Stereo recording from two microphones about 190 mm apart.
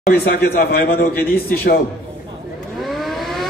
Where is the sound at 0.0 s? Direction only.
50° left (ahead or behind).